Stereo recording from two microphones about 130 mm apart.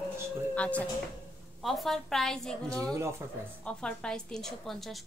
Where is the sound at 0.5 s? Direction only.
10° left (ahead or behind).